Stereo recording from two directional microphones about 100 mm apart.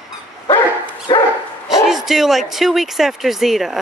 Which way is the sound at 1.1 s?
45° left (ahead or behind).